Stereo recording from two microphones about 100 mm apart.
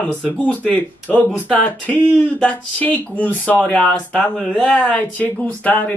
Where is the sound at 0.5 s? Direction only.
15° left (ahead or behind).